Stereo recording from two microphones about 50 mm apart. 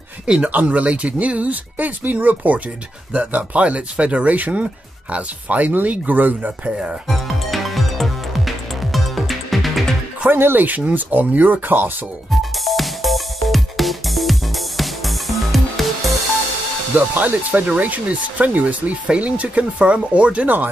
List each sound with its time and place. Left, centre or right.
0.4 s speech: right
7.1 s music: centre
10.3 s speech: right
10.6 s speech: right
12.3 s music: centre
16.9 s speech: right
20.4 s speech: right